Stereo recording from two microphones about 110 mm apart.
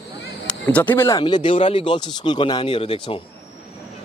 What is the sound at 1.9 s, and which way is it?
Speech, 45° left (ahead or behind).